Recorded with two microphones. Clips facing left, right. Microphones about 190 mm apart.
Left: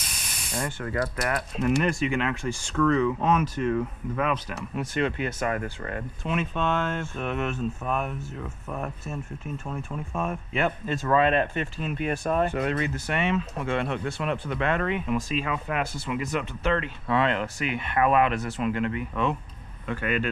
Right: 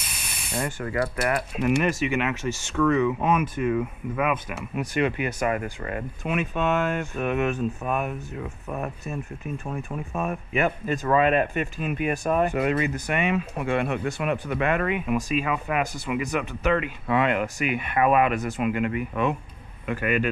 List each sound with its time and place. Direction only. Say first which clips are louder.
0.5 s speech: right 2 dB; 10° right (ahead or behind)
1.8 s speech: right 1 dB; 20° right (ahead or behind)